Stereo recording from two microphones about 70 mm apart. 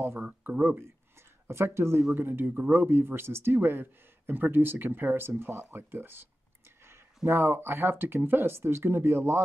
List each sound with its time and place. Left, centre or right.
0.2 s speech: right
1.5 s speech: right
7.2 s speech: right